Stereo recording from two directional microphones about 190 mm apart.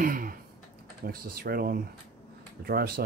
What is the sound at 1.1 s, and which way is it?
Speech, 55° right (ahead or behind).